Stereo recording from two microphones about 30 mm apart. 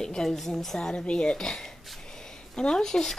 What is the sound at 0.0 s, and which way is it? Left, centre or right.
Speech, left.